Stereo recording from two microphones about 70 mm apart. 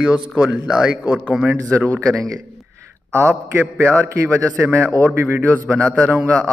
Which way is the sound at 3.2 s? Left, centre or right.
Right.